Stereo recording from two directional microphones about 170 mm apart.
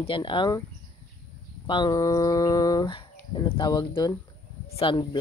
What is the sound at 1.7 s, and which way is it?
Speech, 25° left (ahead or behind).